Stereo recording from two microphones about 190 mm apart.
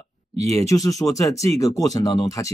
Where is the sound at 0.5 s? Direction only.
15° left (ahead or behind).